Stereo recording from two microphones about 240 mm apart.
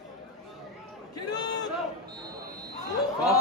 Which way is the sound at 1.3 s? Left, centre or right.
Centre.